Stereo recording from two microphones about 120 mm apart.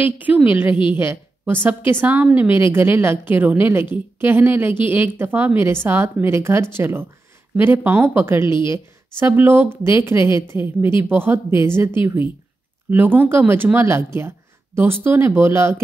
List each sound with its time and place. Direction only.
0.0 s a woman's voice: 15° right (ahead or behind)